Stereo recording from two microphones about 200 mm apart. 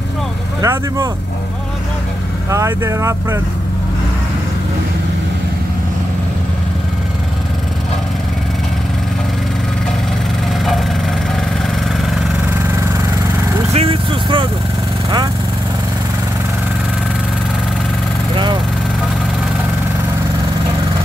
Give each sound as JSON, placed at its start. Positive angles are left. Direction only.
{"t": 0.6, "sound": "speech", "side_deg": -15}
{"t": 2.5, "sound": "speech", "side_deg": -15}
{"t": 13.7, "sound": "speech", "side_deg": -25}
{"t": 18.3, "sound": "vehicle", "side_deg": -25}